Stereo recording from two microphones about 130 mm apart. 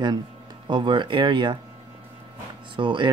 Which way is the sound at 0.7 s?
35° right (ahead or behind).